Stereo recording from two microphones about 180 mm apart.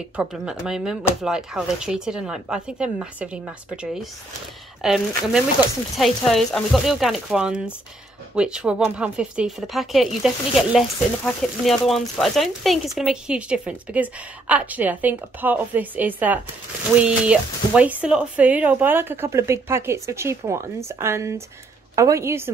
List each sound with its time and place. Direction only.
0.1 s speech: 5° right (ahead or behind)